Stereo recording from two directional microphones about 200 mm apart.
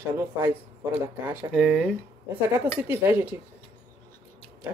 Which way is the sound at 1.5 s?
Centre (ahead or behind).